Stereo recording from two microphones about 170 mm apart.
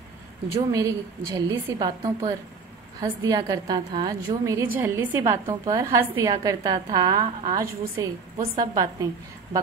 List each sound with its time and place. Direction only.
0.7 s a woman's voice: 20° right (ahead or behind)